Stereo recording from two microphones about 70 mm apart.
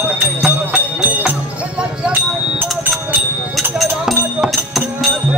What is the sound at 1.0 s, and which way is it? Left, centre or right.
Music, right.